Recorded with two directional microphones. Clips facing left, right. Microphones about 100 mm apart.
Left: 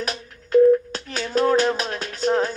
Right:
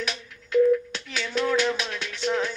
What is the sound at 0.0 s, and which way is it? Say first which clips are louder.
Music: left 3 dB; 40° left (ahead or behind).